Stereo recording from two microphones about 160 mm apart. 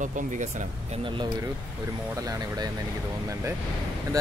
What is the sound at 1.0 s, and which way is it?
A man's voice, 30° right (ahead or behind).